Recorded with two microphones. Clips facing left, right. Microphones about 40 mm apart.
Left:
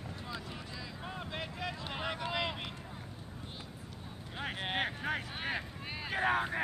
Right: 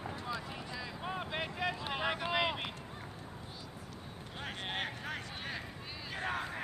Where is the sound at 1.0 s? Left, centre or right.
Centre.